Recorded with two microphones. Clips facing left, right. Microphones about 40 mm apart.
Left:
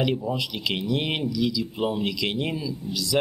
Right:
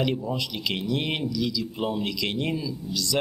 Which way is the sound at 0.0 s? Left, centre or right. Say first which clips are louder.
Left 1 dB; centre.